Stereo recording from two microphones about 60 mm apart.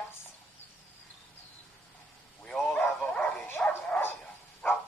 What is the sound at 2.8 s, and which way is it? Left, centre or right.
Dog, left.